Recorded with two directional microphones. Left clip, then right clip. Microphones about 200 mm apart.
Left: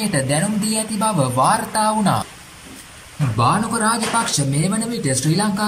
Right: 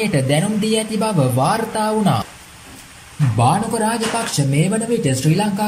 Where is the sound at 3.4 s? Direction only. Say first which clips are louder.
Right 1 dB; 5° right (ahead or behind).